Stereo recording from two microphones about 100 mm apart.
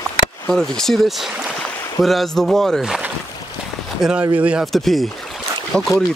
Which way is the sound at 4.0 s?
10° right (ahead or behind).